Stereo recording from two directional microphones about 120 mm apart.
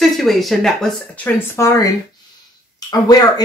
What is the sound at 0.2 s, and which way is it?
Speech, centre (ahead or behind).